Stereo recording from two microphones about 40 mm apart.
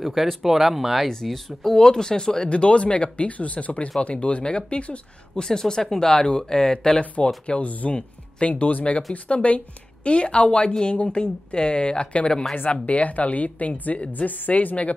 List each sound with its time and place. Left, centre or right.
0.0 s speech: centre
1.0 s speech: centre; by 5.0 s left
5.3 s speech: centre
7.4 s a woman's voice: left
8.5 s a woman's voice: left